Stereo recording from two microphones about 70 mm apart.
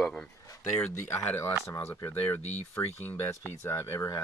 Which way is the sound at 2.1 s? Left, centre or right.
Left.